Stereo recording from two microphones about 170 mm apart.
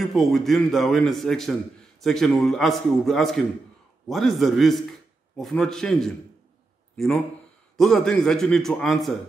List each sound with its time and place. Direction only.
0.0 s a man's voice: centre (ahead or behind)
7.7 s a man's voice: 5° left (ahead or behind)